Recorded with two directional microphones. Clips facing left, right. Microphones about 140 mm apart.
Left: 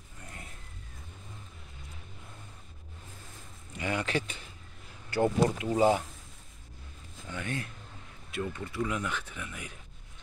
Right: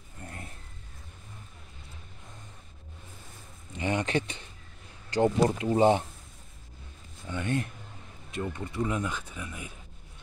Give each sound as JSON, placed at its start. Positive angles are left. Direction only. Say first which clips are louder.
{"t": 3.7, "sound": "speech", "louder": "right 3 dB", "side_deg": -25}
{"t": 7.2, "sound": "speech", "louder": "right 6 dB", "side_deg": -25}